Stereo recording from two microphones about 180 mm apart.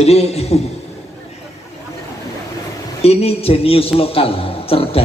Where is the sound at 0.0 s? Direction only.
35° left (ahead or behind).